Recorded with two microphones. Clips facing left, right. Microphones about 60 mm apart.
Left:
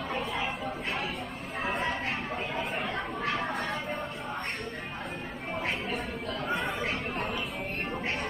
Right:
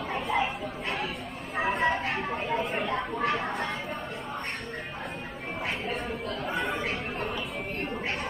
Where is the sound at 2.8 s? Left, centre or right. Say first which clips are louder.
Right 4 dB; right.